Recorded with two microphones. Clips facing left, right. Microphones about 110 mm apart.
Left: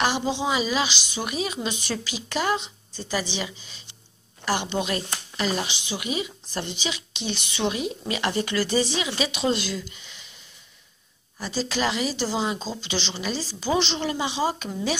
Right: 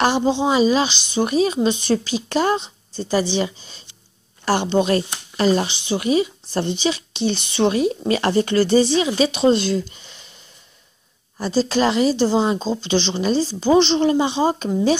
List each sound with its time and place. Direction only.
0.0 s a woman's voice: 35° right (ahead or behind)
9.8 s a sound: 35° right (ahead or behind)
11.3 s a woman's voice: 35° right (ahead or behind)